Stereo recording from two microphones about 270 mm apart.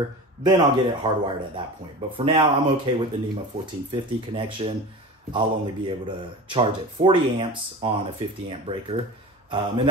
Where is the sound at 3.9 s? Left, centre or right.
Centre.